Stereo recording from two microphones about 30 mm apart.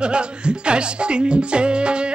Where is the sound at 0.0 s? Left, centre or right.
Right.